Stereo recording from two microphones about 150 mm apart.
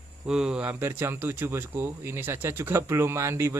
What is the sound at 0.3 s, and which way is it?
Speech, 5° right (ahead or behind).